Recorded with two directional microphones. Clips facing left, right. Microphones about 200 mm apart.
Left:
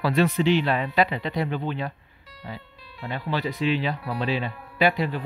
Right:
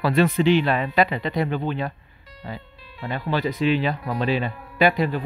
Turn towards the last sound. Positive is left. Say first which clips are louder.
# right 3 dB
turn(degrees=-50)  # may be behind; listen again after turning